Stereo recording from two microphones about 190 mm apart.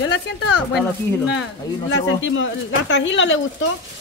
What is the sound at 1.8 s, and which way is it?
Speech, 85° left.